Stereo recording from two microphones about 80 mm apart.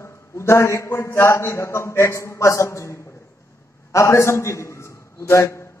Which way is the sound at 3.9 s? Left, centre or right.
Left.